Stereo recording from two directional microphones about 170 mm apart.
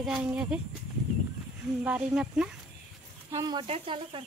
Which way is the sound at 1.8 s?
5° right (ahead or behind).